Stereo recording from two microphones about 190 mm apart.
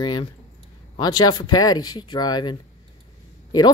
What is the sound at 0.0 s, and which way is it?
Speech, 25° left (ahead or behind).